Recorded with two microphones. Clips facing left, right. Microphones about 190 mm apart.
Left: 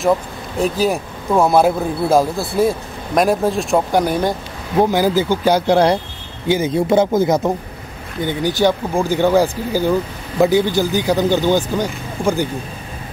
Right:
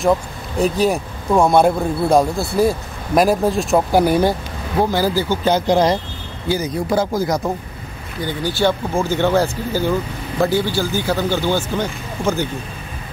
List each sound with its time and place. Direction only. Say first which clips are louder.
0.6 s speech: right 1 dB; centre (ahead or behind)
4.7 s speech: left 3 dB; 15° left (ahead or behind)
6.5 s speech: left 4 dB; 25° left (ahead or behind)